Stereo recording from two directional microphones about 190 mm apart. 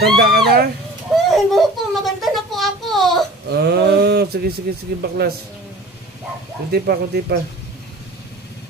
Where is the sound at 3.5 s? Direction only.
60° right (ahead or behind).